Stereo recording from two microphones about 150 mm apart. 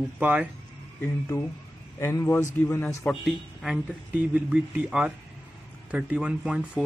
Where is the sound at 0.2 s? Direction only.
10° right (ahead or behind).